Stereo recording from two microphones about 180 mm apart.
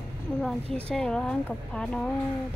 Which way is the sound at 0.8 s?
5° left (ahead or behind).